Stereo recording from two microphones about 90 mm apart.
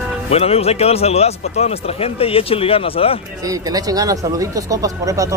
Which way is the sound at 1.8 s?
90° left.